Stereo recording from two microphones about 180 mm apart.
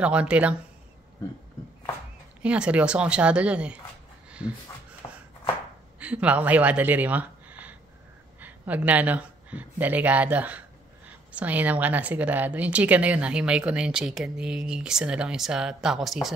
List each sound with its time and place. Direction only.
0.0 s a woman's voice: 5° right (ahead or behind)
2.4 s a woman's voice: 5° right (ahead or behind)
5.0 s chopping: 20° left (ahead or behind)
5.9 s a woman's voice: 10° right (ahead or behind)